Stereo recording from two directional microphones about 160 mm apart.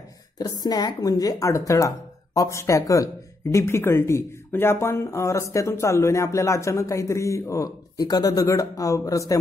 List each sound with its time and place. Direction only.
0.4 s speech: 25° left (ahead or behind)